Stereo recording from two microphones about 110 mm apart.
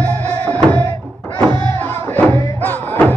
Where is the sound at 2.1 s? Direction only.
15° left (ahead or behind).